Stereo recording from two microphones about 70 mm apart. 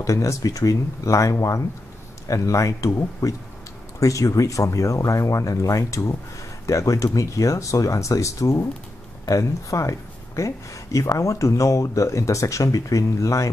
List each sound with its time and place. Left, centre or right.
0.0 s speech: left